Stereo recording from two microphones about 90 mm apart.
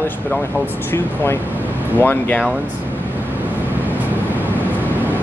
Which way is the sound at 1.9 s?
20° left (ahead or behind).